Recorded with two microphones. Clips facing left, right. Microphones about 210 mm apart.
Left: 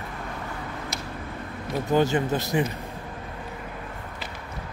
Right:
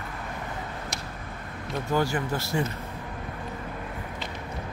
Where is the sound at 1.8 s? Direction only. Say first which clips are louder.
Left 5 dB; 20° left (ahead or behind).